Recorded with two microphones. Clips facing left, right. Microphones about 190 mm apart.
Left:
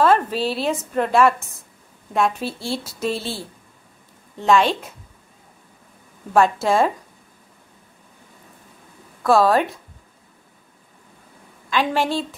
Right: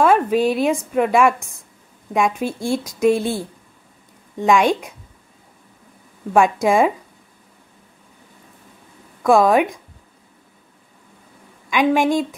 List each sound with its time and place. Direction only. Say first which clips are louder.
0.0 s a woman's voice: right 3 dB; 10° right (ahead or behind)
6.3 s a woman's voice: right 2 dB; 15° right (ahead or behind)
9.2 s a woman's voice: right 2 dB; 15° right (ahead or behind)
11.7 s a woman's voice: right 5 dB; 15° right (ahead or behind)